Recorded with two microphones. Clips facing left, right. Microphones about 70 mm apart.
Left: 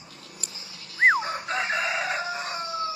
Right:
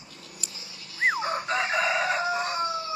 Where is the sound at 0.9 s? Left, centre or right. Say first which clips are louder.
Left 6 dB; left.